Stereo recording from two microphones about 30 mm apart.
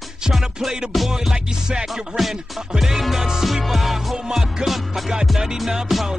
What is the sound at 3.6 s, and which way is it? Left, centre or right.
Music, centre.